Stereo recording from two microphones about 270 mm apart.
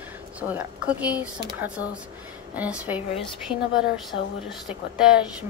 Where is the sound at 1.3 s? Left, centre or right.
Centre.